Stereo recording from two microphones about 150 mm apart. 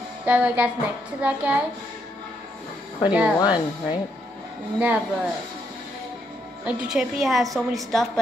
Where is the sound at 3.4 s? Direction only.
25° left (ahead or behind).